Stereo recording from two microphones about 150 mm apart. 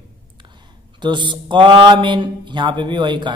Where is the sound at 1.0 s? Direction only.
30° right (ahead or behind).